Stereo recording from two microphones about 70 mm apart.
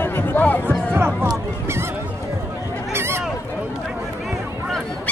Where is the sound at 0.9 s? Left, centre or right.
Right.